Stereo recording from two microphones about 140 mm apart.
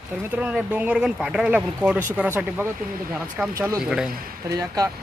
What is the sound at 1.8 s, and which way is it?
Speech, 15° right (ahead or behind).